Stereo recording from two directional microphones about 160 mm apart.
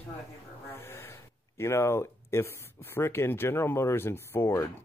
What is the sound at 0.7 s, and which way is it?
Speech, 15° left (ahead or behind).